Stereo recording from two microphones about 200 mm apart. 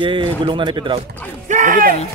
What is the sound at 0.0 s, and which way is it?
Speech, 25° right (ahead or behind).